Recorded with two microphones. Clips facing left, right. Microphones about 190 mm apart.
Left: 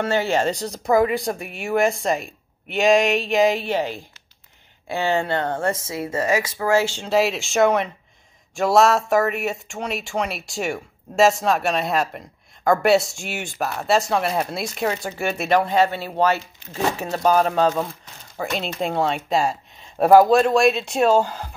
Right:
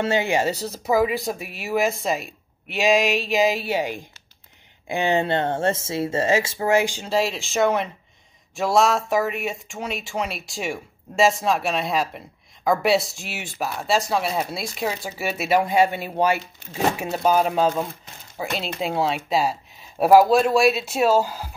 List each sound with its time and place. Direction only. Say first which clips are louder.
0.0 s speech: left 1 dB; 15° right (ahead or behind)
7.1 s speech: left 3 dB; centre (ahead or behind)